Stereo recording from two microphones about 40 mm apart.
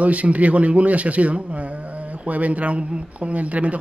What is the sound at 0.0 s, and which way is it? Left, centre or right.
Speech, right.